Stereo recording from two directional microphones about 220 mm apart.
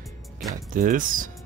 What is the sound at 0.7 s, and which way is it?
Speech, 40° right (ahead or behind).